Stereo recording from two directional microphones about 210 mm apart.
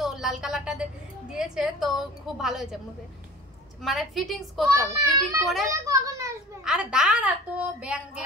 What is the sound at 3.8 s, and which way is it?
A woman's voice, centre (ahead or behind).